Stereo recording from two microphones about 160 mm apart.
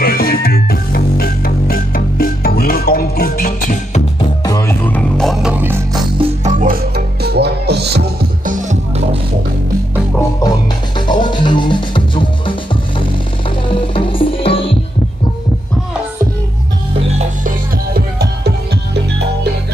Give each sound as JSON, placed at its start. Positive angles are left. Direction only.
{"t": 0.0, "sound": "music", "side_deg": 70}
{"t": 4.5, "sound": "music", "side_deg": 15}
{"t": 6.1, "sound": "music", "side_deg": -35}
{"t": 7.2, "sound": "music", "side_deg": -90}
{"t": 8.5, "sound": "music", "side_deg": -50}
{"t": 11.0, "sound": "music", "side_deg": 30}
{"t": 13.7, "sound": "music", "side_deg": 35}
{"t": 17.4, "sound": "music", "side_deg": -60}